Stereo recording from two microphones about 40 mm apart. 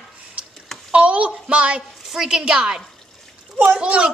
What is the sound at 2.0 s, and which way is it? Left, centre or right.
Speech, centre.